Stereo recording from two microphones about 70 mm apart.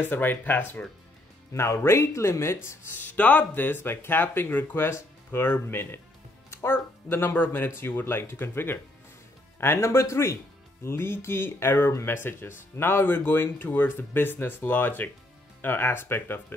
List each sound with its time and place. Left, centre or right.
0.0 s speech: left
1.5 s speech: left